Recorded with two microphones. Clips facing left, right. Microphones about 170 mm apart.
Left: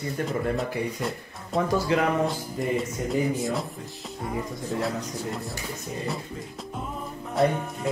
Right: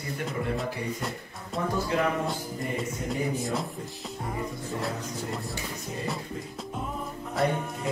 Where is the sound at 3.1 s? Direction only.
Centre (ahead or behind).